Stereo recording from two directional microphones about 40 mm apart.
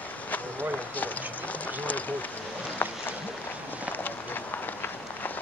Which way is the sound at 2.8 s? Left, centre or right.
Left.